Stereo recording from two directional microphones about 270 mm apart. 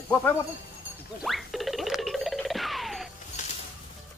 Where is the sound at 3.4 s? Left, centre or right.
Left.